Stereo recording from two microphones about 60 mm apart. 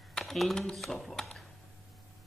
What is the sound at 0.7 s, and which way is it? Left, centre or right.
Speech, centre.